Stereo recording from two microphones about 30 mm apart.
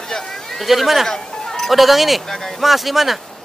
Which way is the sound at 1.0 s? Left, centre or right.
Centre.